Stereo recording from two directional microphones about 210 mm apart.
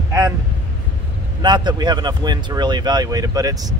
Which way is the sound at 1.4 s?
20° right (ahead or behind).